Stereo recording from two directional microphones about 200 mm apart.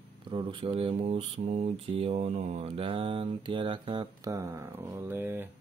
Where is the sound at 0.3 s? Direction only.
25° right (ahead or behind).